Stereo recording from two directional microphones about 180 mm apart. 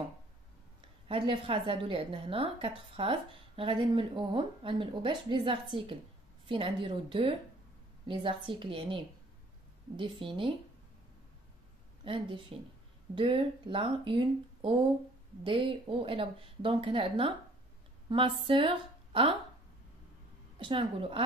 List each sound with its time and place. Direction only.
1.0 s a woman's voice: 30° right (ahead or behind)
12.0 s a woman's voice: 30° right (ahead or behind)
20.5 s a woman's voice: 30° right (ahead or behind)